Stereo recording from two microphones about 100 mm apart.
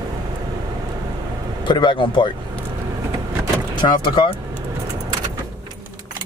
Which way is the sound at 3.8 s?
50° left (ahead or behind).